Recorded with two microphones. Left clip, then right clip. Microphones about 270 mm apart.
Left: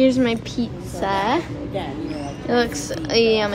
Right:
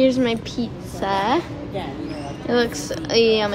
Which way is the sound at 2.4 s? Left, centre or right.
Centre.